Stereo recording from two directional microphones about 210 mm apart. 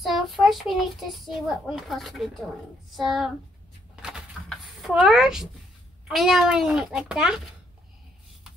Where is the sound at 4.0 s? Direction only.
5° right (ahead or behind).